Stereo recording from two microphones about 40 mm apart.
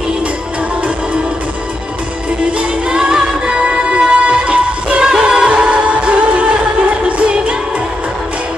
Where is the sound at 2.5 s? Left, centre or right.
Right.